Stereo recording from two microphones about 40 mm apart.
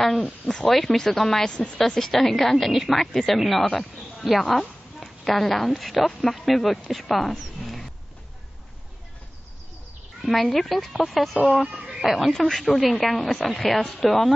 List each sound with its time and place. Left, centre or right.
0.0 s a woman's voice: centre
3.0 s speech: centre
3.3 s speech: centre
10.2 s a woman's voice: centre
12.3 s speech: centre
12.6 s a woman's voice: centre